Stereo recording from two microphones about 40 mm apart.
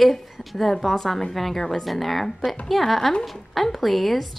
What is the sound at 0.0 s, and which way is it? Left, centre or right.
A woman's voice, centre.